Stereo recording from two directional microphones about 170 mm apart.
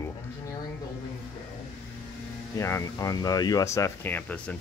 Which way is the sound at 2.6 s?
20° left (ahead or behind).